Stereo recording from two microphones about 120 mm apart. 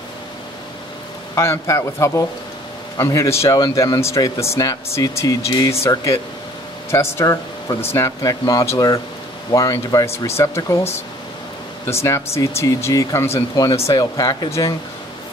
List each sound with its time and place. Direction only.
1.3 s speech: 25° left (ahead or behind)
7.2 s speech: 30° left (ahead or behind)
11.9 s speech: 25° left (ahead or behind)